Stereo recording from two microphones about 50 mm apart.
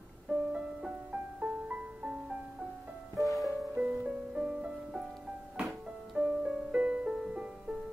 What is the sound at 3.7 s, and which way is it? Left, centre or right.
Music, right.